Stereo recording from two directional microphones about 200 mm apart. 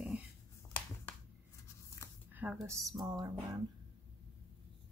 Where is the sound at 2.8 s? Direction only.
20° right (ahead or behind).